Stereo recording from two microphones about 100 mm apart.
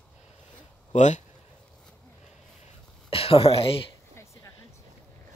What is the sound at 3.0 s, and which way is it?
Speech, 70° left (ahead or behind).